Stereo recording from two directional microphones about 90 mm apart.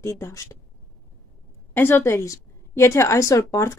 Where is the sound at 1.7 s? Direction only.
25° left (ahead or behind).